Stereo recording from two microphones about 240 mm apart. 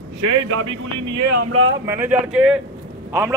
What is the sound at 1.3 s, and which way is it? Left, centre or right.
Speech, right.